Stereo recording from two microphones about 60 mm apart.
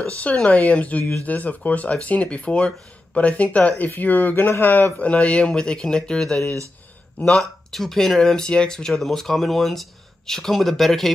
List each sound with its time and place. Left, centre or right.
0.0 s speech: left; by 11.1 s centre